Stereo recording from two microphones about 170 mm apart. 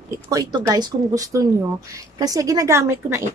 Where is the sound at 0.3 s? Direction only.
20° right (ahead or behind).